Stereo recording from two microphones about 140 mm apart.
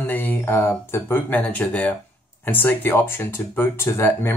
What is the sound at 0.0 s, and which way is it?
Speech, 10° left (ahead or behind).